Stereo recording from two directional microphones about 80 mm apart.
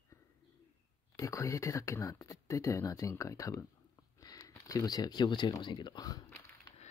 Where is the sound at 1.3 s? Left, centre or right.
Left.